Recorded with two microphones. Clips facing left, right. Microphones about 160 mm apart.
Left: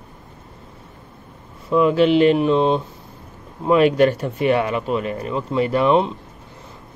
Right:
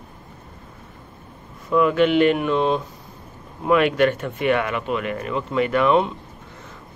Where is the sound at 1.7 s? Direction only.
30° left (ahead or behind).